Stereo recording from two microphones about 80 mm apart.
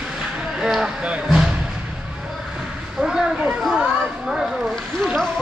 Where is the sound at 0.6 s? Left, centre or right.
Centre.